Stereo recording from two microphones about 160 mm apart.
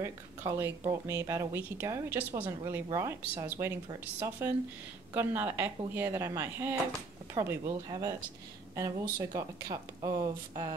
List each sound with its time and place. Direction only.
0.0 s speech: 15° right (ahead or behind)